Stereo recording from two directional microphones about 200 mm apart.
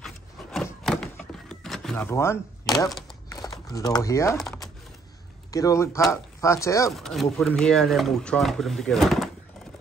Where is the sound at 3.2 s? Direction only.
20° left (ahead or behind).